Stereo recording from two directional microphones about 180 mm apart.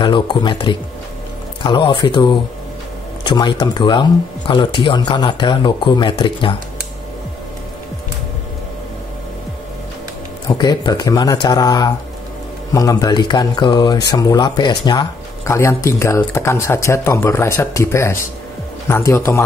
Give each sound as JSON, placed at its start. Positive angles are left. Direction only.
{"t": 0.0, "sound": "speech", "side_deg": 25}
{"t": 10.5, "sound": "speech", "side_deg": 25}